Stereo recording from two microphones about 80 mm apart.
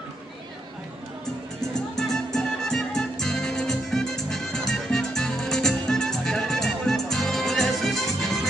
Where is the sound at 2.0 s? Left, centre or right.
Centre.